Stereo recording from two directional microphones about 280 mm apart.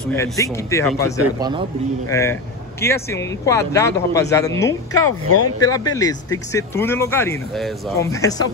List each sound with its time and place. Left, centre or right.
0.0 s speech: centre
1.2 s speech: centre
2.0 s speech: centre